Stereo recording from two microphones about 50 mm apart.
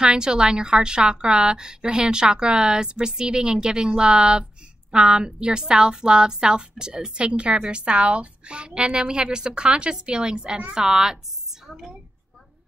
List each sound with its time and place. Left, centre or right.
0.0 s a woman's voice: centre